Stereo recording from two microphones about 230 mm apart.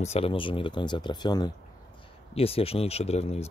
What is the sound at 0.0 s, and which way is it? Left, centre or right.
Speech, left.